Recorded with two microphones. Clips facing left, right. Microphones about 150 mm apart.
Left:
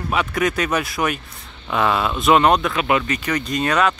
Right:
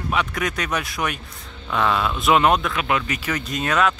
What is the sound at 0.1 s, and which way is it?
Speech, centre (ahead or behind).